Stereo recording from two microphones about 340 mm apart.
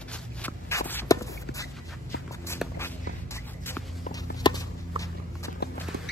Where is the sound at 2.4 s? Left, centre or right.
Centre.